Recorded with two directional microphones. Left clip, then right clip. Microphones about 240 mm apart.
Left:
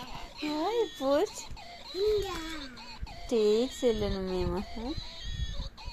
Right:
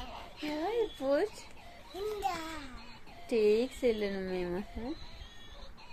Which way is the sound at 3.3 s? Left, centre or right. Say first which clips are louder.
Left 2 dB; centre.